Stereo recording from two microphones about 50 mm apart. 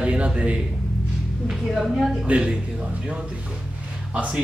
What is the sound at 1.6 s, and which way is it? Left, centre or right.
Speech, centre.